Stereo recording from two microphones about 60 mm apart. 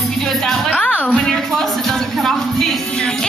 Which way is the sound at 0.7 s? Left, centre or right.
Left.